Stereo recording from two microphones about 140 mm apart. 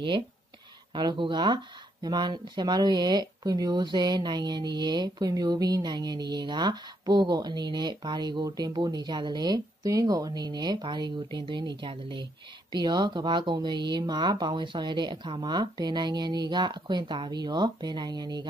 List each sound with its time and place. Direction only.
0.9 s speech: 35° right (ahead or behind)